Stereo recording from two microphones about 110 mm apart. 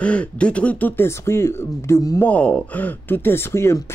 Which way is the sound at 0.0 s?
10° left (ahead or behind).